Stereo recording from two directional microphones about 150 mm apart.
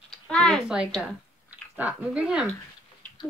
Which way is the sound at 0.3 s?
5° left (ahead or behind).